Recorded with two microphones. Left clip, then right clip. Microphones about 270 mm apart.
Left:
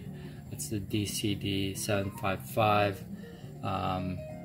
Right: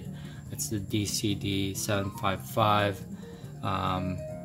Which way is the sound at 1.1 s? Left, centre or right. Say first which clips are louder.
Right 2 dB; right.